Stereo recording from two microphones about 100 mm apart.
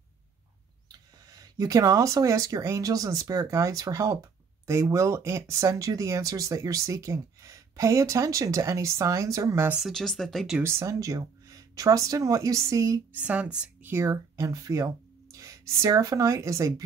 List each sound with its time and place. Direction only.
0.9 s speech: 35° right (ahead or behind)
9.7 s speech: 5° right (ahead or behind)
10.6 s speech: 30° right (ahead or behind)
13.1 s speech: 15° right (ahead or behind)
13.8 s speech: 25° right (ahead or behind)